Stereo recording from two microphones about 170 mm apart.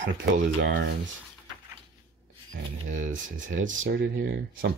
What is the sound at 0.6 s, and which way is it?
Speech, 90° right.